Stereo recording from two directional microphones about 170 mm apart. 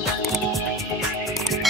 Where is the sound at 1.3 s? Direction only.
Centre (ahead or behind).